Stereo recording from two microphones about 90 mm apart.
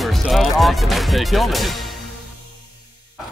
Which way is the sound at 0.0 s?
Centre (ahead or behind).